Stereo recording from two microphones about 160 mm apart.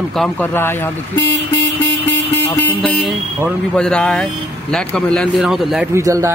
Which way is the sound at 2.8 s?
5° left (ahead or behind).